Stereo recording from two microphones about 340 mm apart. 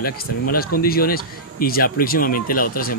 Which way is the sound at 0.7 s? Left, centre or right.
Left.